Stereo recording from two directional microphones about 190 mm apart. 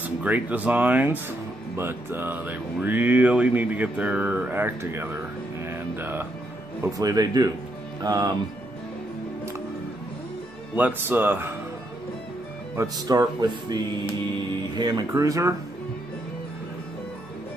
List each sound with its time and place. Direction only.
0.0 s speech: 10° right (ahead or behind)
10.8 s speech: 10° right (ahead or behind)
12.7 s speech: 20° right (ahead or behind)
14.8 s speech: 20° right (ahead or behind)